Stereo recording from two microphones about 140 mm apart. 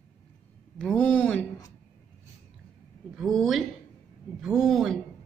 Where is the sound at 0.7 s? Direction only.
5° left (ahead or behind).